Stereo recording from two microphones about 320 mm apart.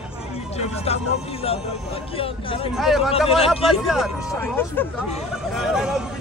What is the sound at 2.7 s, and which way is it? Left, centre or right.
Speech, centre.